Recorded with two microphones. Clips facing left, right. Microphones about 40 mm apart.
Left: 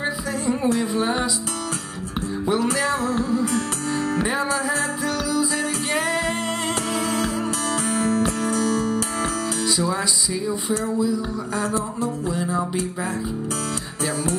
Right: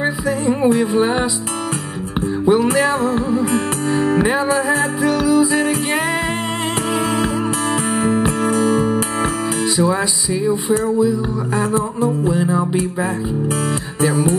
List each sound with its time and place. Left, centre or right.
0.0 s music: right
2.4 s music: right
7.9 s music: right
14.0 s music: right